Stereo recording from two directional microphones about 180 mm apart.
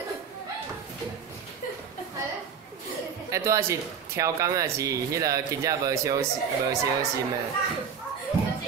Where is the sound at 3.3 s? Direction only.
15° right (ahead or behind).